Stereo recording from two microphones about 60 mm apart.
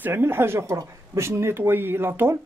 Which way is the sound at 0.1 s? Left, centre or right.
Right.